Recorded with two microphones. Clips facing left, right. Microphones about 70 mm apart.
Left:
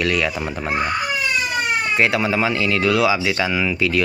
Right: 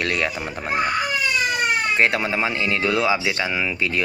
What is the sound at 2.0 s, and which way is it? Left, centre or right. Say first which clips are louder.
Speech: left 2 dB; right.